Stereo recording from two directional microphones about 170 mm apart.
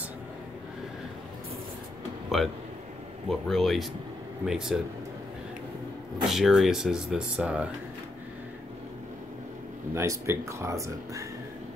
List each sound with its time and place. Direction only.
2.2 s a sound: centre (ahead or behind)
3.3 s speech: centre (ahead or behind)
6.2 s speech: centre (ahead or behind)
9.9 s speech: 15° right (ahead or behind)